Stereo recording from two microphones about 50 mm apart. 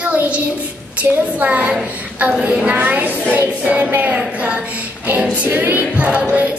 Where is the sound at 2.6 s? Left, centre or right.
Right.